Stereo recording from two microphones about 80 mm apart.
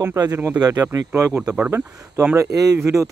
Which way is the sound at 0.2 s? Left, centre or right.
Right.